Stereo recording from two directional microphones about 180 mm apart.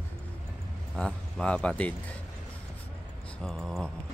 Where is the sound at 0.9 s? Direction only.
5° left (ahead or behind).